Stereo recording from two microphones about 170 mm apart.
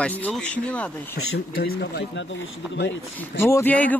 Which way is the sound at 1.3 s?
75° left (ahead or behind).